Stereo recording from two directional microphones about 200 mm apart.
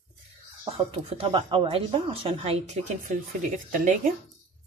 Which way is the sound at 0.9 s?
25° right (ahead or behind).